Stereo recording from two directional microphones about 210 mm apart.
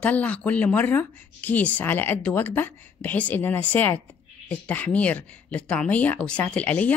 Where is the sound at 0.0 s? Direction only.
5° left (ahead or behind).